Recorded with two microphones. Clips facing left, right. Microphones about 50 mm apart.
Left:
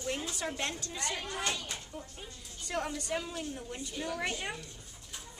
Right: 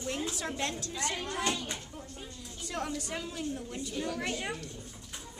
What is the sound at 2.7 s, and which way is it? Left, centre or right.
A woman's voice, centre.